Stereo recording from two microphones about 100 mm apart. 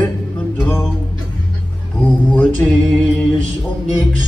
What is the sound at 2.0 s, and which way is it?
Music, 15° left (ahead or behind).